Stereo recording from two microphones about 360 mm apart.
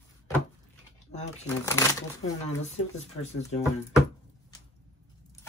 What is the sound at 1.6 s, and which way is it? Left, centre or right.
Speech, centre.